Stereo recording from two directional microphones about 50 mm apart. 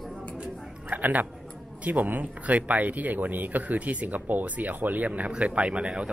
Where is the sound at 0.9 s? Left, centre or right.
Right.